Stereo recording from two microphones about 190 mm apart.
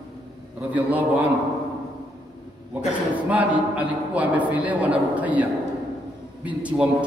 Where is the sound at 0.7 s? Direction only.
10° right (ahead or behind).